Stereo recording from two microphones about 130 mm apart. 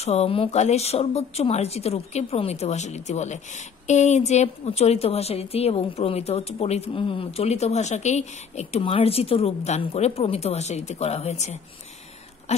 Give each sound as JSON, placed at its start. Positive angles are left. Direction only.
{"t": 0.0, "sound": "speech", "side_deg": 55}